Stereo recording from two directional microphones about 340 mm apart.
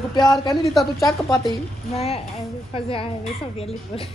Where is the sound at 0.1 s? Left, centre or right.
Centre.